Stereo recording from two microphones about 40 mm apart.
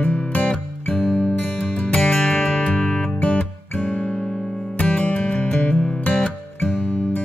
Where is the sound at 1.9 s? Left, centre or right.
Left.